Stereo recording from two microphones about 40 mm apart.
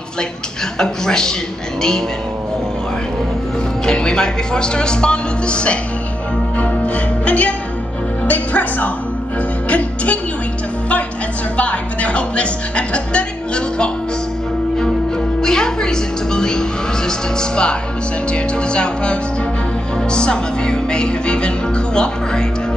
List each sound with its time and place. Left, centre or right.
0.7 s a man's voice: centre
3.8 s speech: left
7.2 s music: left
8.3 s music: left
11.5 s speech: left
15.4 s music: centre
17.4 s speech: left